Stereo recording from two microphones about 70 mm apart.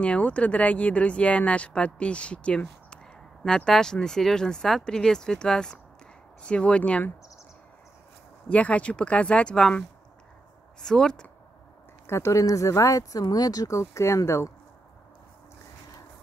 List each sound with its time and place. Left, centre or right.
0.0 s speech: centre
8.5 s speech: centre
12.1 s speech: left